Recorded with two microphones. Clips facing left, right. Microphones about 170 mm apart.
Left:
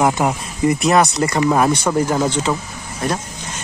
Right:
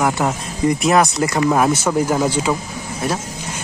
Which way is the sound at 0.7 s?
Centre (ahead or behind).